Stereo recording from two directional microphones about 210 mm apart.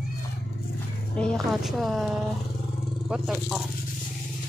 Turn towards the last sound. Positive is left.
turn(degrees=-5)  # may be behind; listen again after turning